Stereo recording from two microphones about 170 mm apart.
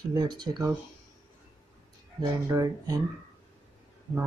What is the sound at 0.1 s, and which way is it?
Speech, 25° right (ahead or behind).